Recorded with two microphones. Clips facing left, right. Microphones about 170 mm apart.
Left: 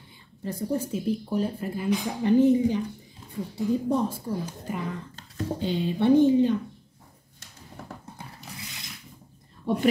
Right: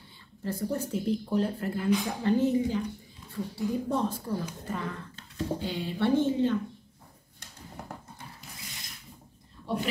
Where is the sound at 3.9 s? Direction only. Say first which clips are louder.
Left 3 dB; 10° left (ahead or behind).